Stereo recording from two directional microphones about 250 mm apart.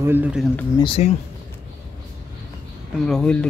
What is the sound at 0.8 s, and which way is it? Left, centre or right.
Speech, left.